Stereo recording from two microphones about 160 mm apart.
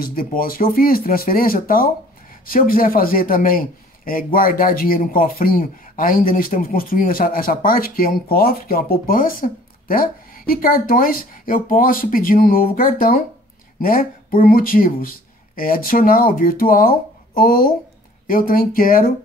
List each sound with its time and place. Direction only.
0.0 s a man's voice: 65° left (ahead or behind)